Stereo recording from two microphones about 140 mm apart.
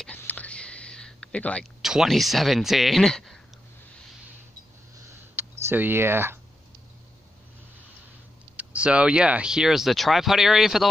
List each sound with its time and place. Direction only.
0.0 s whispering: 10° left (ahead or behind)
1.8 s speech: 5° right (ahead or behind)
5.3 s computer keyboard: 15° right (ahead or behind)
8.5 s speech: 10° right (ahead or behind)